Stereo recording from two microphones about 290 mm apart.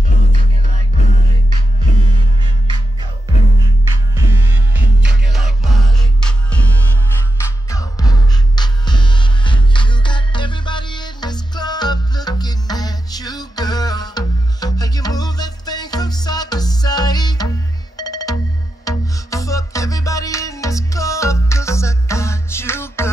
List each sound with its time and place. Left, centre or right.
1.5 s music: centre
3.8 s music: centre
7.7 s music: centre